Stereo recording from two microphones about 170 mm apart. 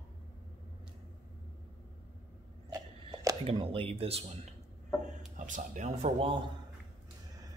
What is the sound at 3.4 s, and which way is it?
Speech, 35° right (ahead or behind).